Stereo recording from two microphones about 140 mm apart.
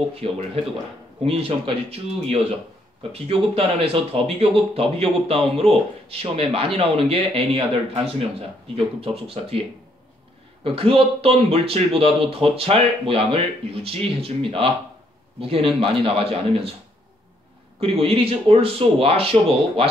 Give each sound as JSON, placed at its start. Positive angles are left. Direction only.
{"t": 0.2, "sound": "speech", "side_deg": -45}
{"t": 10.6, "sound": "speech", "side_deg": -40}
{"t": 17.7, "sound": "speech", "side_deg": -45}